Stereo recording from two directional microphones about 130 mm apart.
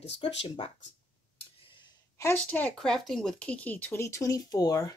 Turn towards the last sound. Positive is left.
turn(degrees=25)  # may be behind; listen again after turning